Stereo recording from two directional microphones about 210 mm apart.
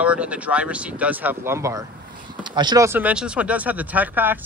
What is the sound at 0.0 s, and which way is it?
A man's voice, 5° right (ahead or behind).